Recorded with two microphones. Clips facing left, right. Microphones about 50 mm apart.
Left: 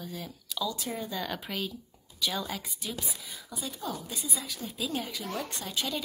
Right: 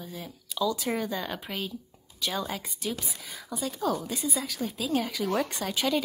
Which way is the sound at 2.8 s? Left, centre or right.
Right.